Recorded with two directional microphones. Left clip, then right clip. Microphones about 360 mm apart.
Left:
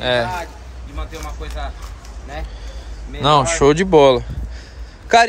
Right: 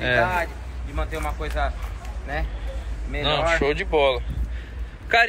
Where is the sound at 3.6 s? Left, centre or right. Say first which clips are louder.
Left 9 dB; left.